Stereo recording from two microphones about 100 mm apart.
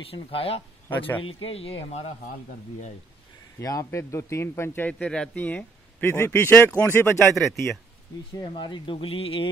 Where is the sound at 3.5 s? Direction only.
30° left (ahead or behind).